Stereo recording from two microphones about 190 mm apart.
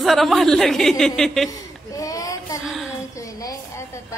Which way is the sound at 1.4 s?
20° left (ahead or behind).